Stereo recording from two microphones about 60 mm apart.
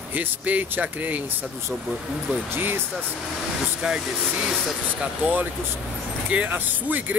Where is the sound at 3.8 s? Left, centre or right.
Centre.